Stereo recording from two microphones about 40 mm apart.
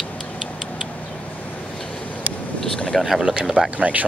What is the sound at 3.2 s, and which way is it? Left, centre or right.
Speech, right.